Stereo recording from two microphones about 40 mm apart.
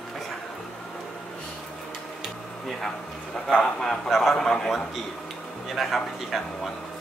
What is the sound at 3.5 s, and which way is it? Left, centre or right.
Speech, centre.